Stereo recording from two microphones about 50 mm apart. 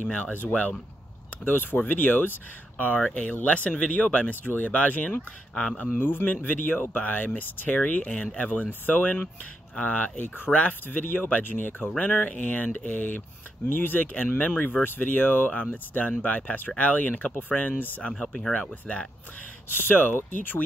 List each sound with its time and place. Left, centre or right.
0.0 s speech: left
5.9 s speech: left
18.2 s speech: centre
18.5 s speech: left
19.7 s speech: left